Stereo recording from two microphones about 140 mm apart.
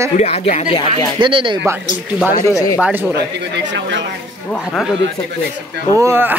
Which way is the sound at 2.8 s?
10° right (ahead or behind).